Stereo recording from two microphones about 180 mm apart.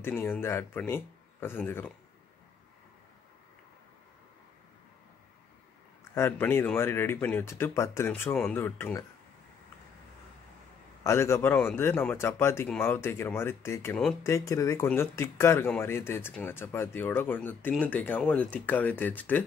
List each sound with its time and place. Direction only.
0.0 s speech: 15° left (ahead or behind)
6.1 s speech: 15° left (ahead or behind)
11.1 s speech: 15° left (ahead or behind)